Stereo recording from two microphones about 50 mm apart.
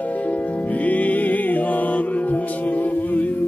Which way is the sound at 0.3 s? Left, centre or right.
Left.